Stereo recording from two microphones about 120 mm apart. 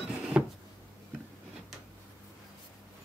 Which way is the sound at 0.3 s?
10° right (ahead or behind).